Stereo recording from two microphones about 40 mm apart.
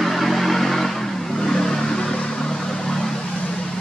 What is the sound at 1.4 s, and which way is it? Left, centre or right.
Vehicle, centre.